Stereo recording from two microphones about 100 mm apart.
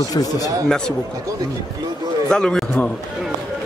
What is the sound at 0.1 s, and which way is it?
Speech, 40° left (ahead or behind).